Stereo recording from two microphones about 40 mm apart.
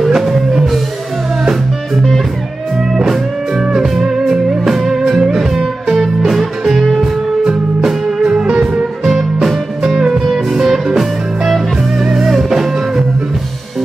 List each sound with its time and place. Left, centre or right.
0.0 s music: centre
2.9 s music: centre
8.5 s music: right
9.0 s music: centre
9.9 s music: centre
10.2 s music: centre